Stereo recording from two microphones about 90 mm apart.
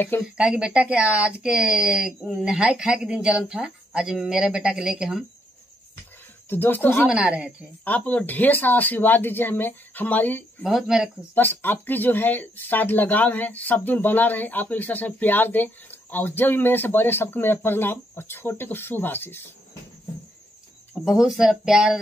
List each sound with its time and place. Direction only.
0.2 s speech: 10° right (ahead or behind)
6.5 s speech: 20° left (ahead or behind)
7.1 s speech: 10° right (ahead or behind)
7.8 s speech: 20° left (ahead or behind)
10.6 s speech: 5° right (ahead or behind)
11.3 s speech: 20° left (ahead or behind)
21.0 s speech: 5° right (ahead or behind)